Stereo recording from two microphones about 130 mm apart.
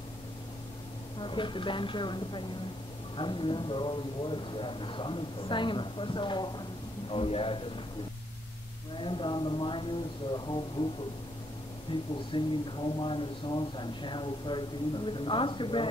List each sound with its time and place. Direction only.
1.2 s a man's voice: 40° left (ahead or behind)
9.0 s speech: 40° left (ahead or behind)
11.9 s a man's voice: 45° left (ahead or behind)